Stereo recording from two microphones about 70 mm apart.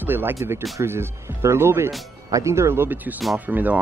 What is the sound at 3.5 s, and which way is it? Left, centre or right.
Speech, right.